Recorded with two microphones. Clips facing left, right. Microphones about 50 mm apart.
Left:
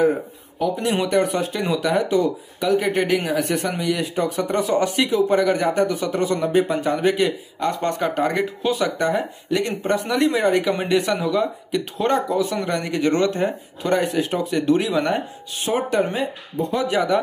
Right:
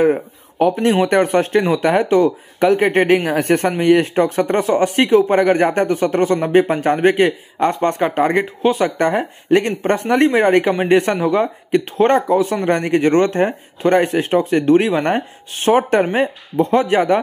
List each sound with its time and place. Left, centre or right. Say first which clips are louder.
0.6 s speech: right 7 dB; right
8.9 s speech: right 4 dB; right